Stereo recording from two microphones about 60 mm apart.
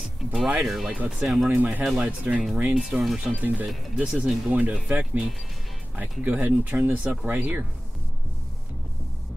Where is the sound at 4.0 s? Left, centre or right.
Centre.